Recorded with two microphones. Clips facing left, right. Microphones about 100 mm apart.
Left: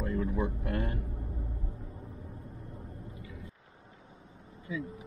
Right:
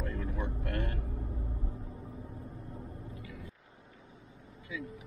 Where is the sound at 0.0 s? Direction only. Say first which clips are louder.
Left 6 dB; 20° left (ahead or behind).